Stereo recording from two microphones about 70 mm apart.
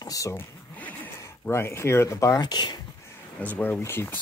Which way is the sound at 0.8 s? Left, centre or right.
Left.